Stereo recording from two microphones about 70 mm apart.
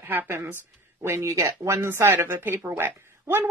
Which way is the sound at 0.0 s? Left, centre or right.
Right.